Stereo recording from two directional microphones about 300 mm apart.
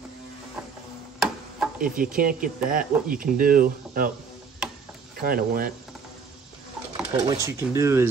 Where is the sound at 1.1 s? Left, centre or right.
Centre.